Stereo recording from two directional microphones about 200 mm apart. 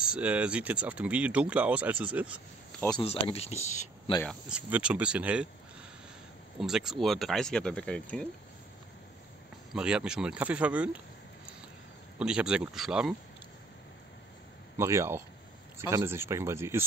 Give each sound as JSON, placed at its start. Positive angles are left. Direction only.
{"t": 0.0, "sound": "speech", "side_deg": -5}
{"t": 2.8, "sound": "speech", "side_deg": 10}
{"t": 3.3, "sound": "speech", "side_deg": 30}
{"t": 4.5, "sound": "speech", "side_deg": -5}
{"t": 6.6, "sound": "speech", "side_deg": 0}
{"t": 9.8, "sound": "speech", "side_deg": -5}
{"t": 12.2, "sound": "speech", "side_deg": -5}
{"t": 14.8, "sound": "speech", "side_deg": -15}